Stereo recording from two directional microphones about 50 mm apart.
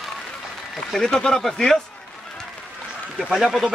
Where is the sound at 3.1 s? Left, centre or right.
Centre.